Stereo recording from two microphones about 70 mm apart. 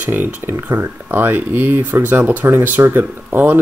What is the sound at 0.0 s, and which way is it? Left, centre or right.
Speech, right.